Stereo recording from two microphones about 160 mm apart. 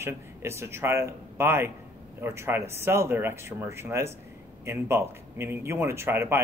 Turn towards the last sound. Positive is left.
turn(degrees=-15)  # may be behind; listen again after turning